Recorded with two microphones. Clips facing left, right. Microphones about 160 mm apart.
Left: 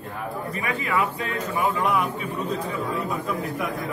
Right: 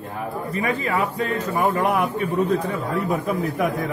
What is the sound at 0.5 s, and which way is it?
A man's voice, 40° right (ahead or behind).